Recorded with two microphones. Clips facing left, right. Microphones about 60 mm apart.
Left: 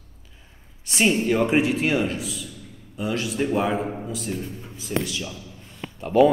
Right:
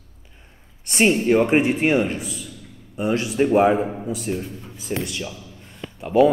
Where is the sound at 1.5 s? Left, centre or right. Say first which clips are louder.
Right 3 dB; right.